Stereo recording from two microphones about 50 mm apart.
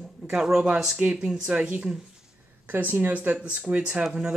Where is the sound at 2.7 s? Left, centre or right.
Right.